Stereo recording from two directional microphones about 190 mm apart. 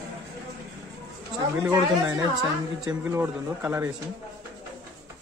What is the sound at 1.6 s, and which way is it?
Speech, 20° right (ahead or behind).